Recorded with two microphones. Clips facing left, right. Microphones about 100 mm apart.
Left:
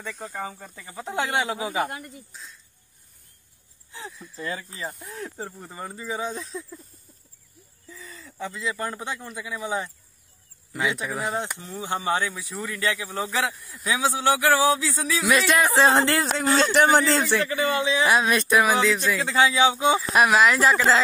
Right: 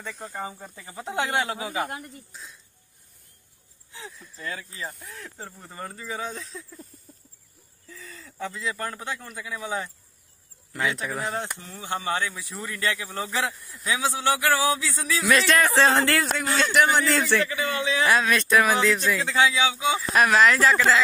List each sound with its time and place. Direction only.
0.0 s speech: centre (ahead or behind)
1.4 s speech: 10° left (ahead or behind)
1.9 s speech: 5° right (ahead or behind)
4.7 s speech: 15° left (ahead or behind)
7.9 s speech: 5° left (ahead or behind)
11.6 s speech: 20° left (ahead or behind)
12.2 s speech: 5° left (ahead or behind); by 16.3 s 20° left (ahead or behind)
16.3 s speech: 30° left (ahead or behind); by 20.9 s 15° left (ahead or behind)